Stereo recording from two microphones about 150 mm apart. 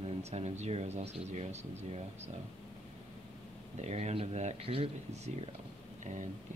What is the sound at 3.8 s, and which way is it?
Speech, 50° right (ahead or behind).